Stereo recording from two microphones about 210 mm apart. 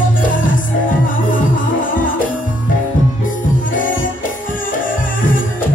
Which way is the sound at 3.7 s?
40° left (ahead or behind).